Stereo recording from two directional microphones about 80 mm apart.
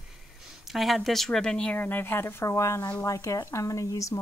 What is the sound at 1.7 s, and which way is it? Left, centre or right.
Speech, left.